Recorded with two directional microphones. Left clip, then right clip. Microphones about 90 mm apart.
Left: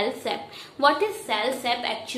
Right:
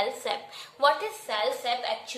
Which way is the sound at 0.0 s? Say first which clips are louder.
Left 2 dB; 35° right (ahead or behind).